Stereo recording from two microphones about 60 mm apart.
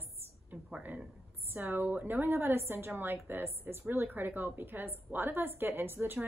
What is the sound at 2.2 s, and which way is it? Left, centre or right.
A woman's voice, right.